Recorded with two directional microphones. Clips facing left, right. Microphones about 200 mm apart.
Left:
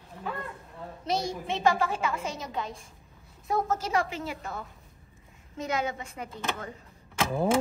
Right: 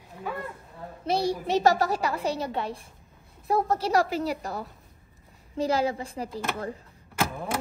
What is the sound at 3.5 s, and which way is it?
A woman's voice, 35° right (ahead or behind).